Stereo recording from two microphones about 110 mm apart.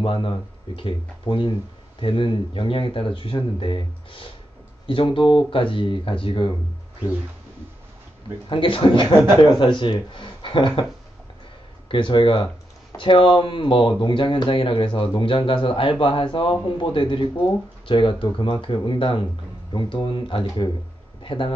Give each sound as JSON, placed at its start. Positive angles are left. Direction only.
{"t": 0.0, "sound": "speech", "side_deg": 55}
{"t": 8.5, "sound": "speech", "side_deg": 50}
{"t": 11.9, "sound": "speech", "side_deg": 50}
{"t": 21.2, "sound": "a sound", "side_deg": 50}